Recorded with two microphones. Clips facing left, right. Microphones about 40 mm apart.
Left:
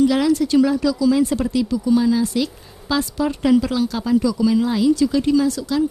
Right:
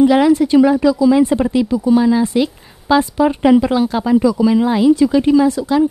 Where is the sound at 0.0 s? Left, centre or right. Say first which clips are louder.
Right 6 dB; right.